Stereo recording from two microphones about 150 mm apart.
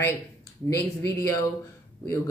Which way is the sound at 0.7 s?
20° left (ahead or behind).